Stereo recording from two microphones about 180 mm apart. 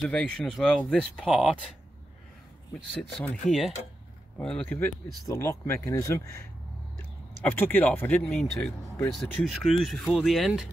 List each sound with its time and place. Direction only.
0.0 s speech: 5° left (ahead or behind)
2.7 s speech: centre (ahead or behind)
5.0 s speech: 20° left (ahead or behind); by 10.7 s centre (ahead or behind)